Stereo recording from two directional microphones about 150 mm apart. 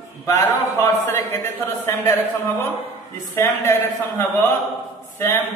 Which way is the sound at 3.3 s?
15° left (ahead or behind).